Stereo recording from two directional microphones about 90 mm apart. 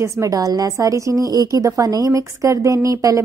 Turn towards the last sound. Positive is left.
turn(degrees=-40)  # may be behind; listen again after turning